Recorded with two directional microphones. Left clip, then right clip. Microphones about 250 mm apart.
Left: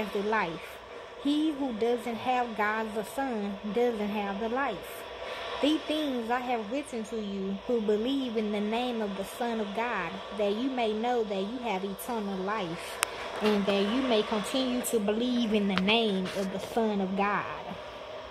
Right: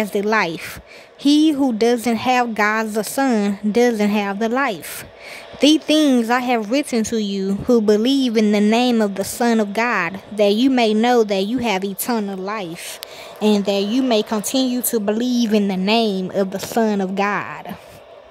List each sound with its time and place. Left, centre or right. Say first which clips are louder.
1.2 s speech: right 14 dB; right